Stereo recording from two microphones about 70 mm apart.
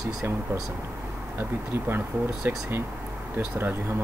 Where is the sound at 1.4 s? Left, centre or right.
Right.